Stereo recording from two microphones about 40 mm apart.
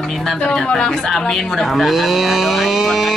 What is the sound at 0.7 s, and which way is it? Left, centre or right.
Speech, centre.